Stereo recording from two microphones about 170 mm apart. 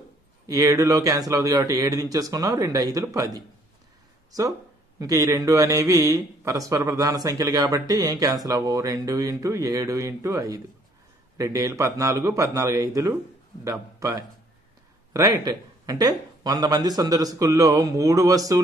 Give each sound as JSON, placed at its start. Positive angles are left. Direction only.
{"t": 0.5, "sound": "a man's voice", "side_deg": -20}